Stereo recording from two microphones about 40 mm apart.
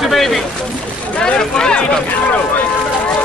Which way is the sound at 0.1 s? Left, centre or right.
Centre.